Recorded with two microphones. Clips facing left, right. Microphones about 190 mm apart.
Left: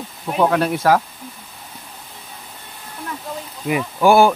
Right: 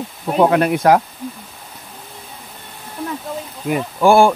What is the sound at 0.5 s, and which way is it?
Speech, 10° right (ahead or behind).